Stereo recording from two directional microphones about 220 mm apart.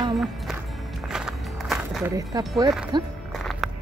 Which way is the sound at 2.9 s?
20° right (ahead or behind).